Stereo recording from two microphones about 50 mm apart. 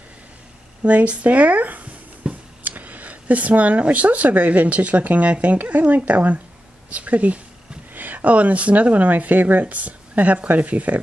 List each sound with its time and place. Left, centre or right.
0.8 s speech: right
2.2 s tick-tock: centre
2.6 s speech: right